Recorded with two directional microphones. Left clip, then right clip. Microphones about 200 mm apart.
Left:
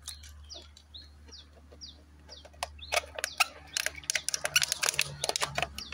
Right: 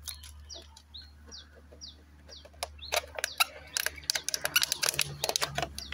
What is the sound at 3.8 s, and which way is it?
Camera, 5° right (ahead or behind).